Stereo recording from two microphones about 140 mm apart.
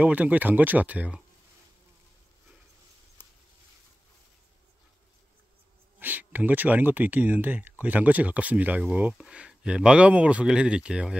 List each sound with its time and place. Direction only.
0.0 s speech: 10° right (ahead or behind)
5.9 s speech: 10° right (ahead or behind)